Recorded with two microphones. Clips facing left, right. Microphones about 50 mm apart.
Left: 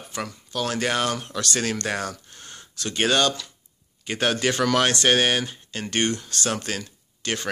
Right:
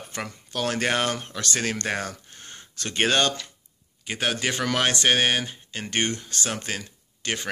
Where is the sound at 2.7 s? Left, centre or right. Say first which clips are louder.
Left 1 dB; right.